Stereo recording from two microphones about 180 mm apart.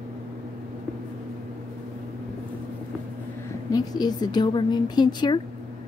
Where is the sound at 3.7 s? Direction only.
20° left (ahead or behind).